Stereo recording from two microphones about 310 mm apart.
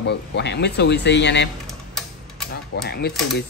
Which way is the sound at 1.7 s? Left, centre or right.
Centre.